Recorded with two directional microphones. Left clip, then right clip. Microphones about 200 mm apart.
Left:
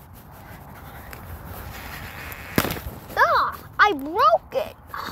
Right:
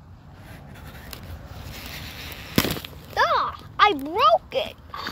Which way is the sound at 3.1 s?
10° right (ahead or behind).